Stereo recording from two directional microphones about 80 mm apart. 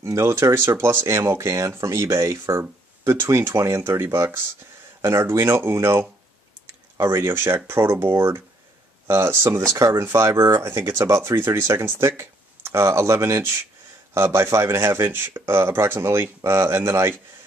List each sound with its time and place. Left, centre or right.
0.0 s speech: right
9.8 s speech: right
10.0 s speech: right